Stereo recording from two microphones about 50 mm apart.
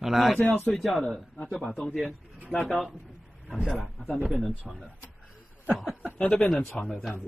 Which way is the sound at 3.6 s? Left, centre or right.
Centre.